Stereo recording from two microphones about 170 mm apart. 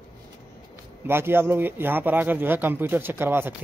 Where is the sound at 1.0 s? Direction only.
15° right (ahead or behind).